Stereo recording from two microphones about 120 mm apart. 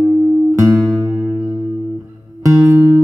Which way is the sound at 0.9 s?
30° right (ahead or behind).